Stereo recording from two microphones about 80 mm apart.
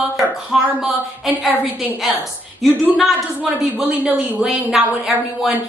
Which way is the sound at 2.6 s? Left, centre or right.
Centre.